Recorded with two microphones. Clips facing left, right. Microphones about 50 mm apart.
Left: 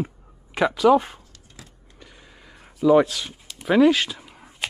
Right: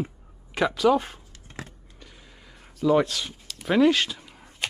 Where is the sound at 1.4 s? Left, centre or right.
Right.